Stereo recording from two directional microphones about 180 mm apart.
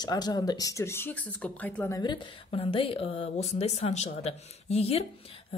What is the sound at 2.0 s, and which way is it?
Speech, 25° left (ahead or behind).